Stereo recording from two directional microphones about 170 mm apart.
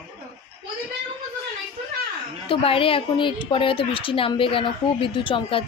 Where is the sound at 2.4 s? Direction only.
30° left (ahead or behind).